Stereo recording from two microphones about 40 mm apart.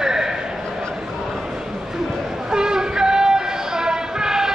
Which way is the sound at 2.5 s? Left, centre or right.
Centre.